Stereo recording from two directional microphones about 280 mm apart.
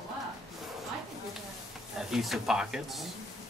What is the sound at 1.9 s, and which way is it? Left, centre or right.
Speech, centre.